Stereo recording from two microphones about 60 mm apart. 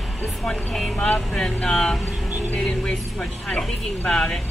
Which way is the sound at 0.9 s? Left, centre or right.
Centre.